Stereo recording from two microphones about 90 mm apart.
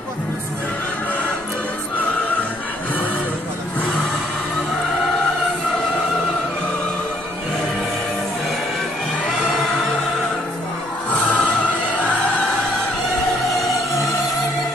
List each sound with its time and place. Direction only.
11.1 s music: 15° left (ahead or behind)